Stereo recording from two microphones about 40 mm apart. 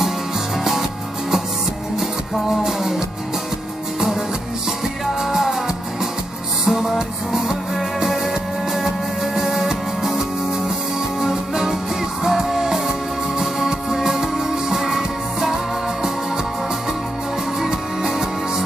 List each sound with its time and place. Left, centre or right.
2.0 s music: centre
5.2 s music: centre
6.6 s music: centre
7.0 s music: centre
8.7 s music: centre
11.2 s music: centre